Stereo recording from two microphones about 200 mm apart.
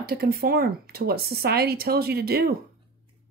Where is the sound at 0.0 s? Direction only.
50° right (ahead or behind).